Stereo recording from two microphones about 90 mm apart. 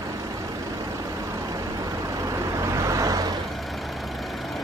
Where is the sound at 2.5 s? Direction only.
35° right (ahead or behind).